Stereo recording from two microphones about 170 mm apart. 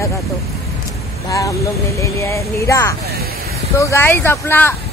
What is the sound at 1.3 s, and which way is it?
Speech, 20° left (ahead or behind).